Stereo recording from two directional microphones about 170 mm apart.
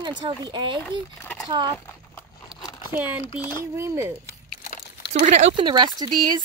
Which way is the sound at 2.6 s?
25° left (ahead or behind).